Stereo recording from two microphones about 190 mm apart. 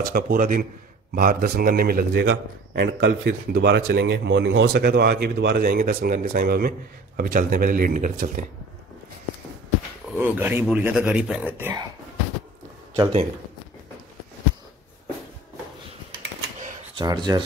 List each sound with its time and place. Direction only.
0.0 s a man's voice: 50° right (ahead or behind)
10.1 s speech: 10° right (ahead or behind)
12.9 s a man's voice: 25° right (ahead or behind)
17.0 s speech: 20° right (ahead or behind)